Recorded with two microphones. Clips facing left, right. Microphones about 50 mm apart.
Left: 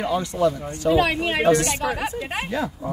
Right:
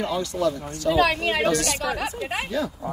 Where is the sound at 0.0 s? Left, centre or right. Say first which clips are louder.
Left 3 dB; left.